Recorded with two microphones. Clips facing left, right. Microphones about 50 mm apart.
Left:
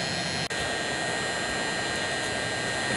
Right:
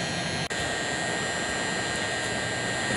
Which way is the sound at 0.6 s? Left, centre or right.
Centre.